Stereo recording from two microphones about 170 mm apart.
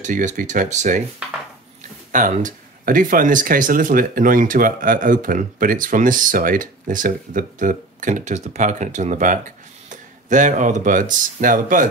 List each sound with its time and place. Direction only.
0.0 s speech: 45° right (ahead or behind)
2.1 s speech: 50° right (ahead or behind)